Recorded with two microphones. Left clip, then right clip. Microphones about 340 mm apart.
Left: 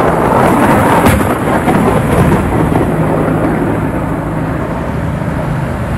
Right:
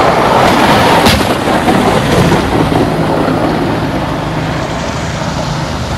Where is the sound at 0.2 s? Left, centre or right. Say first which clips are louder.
Right 2 dB; right.